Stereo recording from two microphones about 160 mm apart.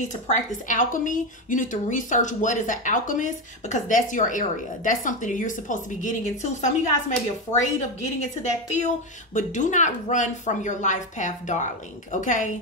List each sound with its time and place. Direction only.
0.7 s speech: 55° left (ahead or behind)